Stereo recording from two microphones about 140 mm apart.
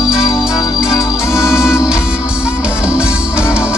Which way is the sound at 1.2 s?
20° left (ahead or behind).